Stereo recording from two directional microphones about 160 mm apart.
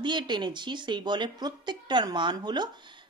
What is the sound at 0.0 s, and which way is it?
Speech, 30° right (ahead or behind).